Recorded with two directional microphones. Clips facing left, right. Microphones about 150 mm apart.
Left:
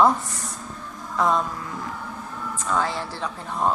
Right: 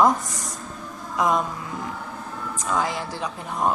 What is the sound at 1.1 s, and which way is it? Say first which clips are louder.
Speech: even; 15° right (ahead or behind).